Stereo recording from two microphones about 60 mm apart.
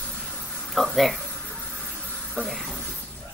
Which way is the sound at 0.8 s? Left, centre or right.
Centre.